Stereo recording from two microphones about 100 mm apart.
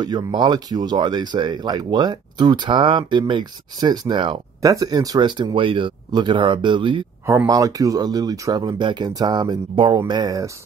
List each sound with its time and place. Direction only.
0.0 s speech: 45° right (ahead or behind)
4.6 s speech: 35° right (ahead or behind); by 7.1 s 50° right (ahead or behind)
7.2 s speech: 30° right (ahead or behind)